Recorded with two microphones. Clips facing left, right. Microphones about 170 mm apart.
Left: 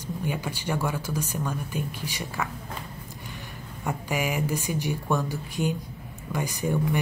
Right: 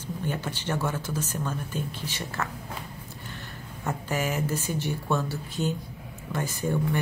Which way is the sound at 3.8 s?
15° left (ahead or behind).